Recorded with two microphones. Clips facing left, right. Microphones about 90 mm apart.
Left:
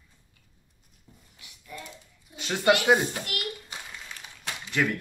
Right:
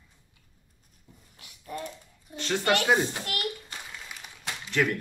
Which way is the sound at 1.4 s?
45° right (ahead or behind).